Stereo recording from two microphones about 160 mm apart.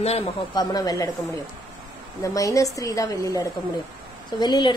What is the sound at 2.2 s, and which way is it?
A woman's voice, 20° left (ahead or behind).